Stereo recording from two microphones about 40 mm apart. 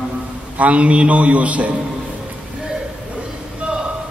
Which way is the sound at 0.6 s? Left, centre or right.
Right.